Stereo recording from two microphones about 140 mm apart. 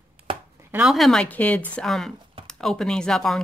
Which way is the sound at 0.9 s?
5° left (ahead or behind).